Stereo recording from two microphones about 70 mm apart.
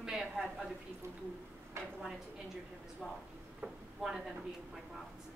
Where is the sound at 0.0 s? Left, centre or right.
Centre.